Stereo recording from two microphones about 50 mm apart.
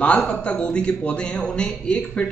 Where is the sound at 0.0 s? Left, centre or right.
Left.